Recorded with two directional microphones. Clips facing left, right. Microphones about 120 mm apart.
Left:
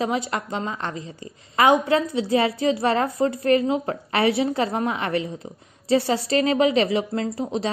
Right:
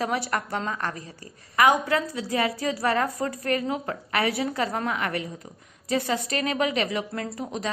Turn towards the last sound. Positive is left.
turn(degrees=30)  # may be behind; listen again after turning